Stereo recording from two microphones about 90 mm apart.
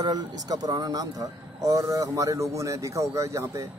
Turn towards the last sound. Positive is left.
turn(degrees=-35)  # may be behind; listen again after turning